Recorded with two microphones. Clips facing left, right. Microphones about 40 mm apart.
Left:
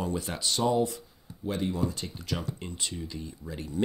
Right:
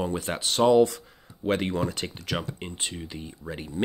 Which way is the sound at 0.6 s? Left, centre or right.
Right.